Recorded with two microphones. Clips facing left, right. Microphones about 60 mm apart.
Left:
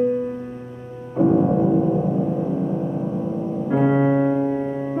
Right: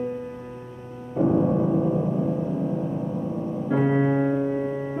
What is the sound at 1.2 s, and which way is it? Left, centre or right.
Music, centre.